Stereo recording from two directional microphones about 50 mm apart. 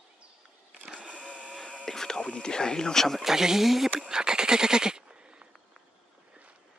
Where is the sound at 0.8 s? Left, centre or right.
Right.